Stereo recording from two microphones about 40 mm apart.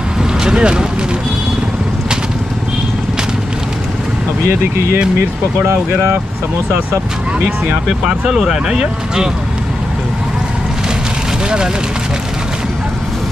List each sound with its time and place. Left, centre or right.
0.2 s vehicle: centre
8.0 s speech: centre